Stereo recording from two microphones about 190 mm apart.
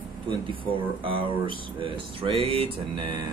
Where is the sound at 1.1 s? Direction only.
25° right (ahead or behind).